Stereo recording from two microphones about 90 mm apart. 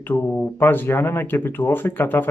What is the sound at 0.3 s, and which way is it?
Speech, 25° left (ahead or behind).